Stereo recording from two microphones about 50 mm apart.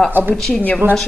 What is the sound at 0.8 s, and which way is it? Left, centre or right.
Speech, right.